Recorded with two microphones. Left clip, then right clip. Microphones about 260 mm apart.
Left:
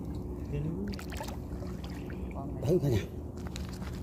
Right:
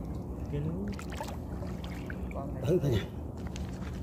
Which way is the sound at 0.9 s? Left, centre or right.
Centre.